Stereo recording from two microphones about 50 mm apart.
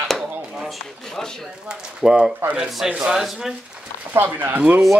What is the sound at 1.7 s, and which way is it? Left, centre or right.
Speech, centre.